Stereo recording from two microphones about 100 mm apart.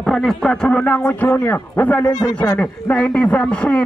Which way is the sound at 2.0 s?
40° left (ahead or behind).